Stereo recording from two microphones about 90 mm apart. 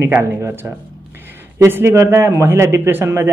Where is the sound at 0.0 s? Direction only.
25° right (ahead or behind).